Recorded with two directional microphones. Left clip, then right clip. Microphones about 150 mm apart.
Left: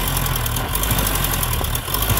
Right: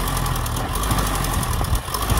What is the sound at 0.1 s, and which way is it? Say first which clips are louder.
Vehicle: left 1 dB; 25° left (ahead or behind).